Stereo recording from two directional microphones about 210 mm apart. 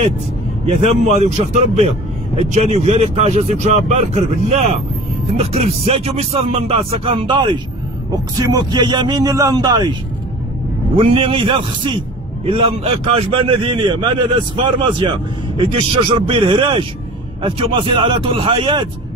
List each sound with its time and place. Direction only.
0.7 s a man's voice: 30° right (ahead or behind)
11.0 s a man's voice: 25° right (ahead or behind)